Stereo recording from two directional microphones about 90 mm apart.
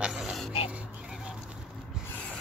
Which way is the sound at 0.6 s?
15° right (ahead or behind).